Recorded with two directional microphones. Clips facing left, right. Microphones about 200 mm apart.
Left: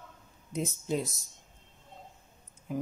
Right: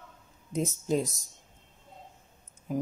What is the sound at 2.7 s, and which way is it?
Speech, 40° right (ahead or behind).